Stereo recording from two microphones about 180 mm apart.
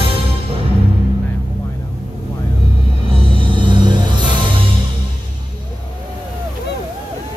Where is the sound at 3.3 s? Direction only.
30° right (ahead or behind).